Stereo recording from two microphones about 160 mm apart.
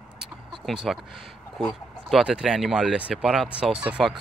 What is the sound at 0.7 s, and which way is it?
Speech, centre (ahead or behind).